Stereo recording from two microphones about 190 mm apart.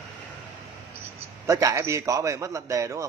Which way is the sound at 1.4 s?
15° right (ahead or behind).